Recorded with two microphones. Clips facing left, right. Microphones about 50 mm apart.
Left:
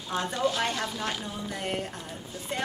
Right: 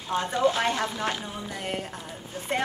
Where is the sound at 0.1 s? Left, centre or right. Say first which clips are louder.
Right 4 dB; centre.